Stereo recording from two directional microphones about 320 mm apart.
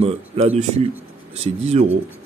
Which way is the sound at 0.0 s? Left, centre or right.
Centre.